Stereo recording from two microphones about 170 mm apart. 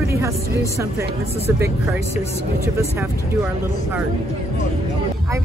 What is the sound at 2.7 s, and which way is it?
Speech, 15° right (ahead or behind).